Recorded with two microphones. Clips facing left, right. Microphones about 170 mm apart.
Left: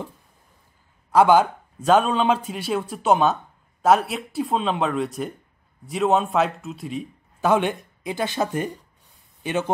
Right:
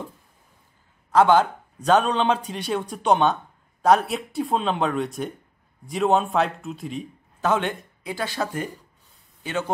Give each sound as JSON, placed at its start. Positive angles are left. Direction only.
{"t": 1.1, "sound": "a man's voice", "side_deg": 10}
{"t": 7.4, "sound": "speech", "side_deg": 15}